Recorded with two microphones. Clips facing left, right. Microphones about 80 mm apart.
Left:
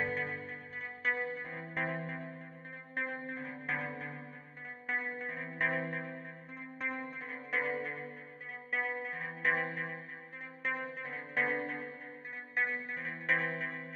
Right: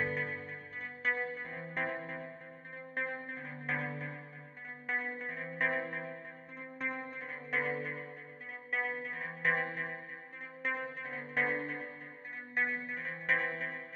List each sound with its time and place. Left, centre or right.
0.0 s music: centre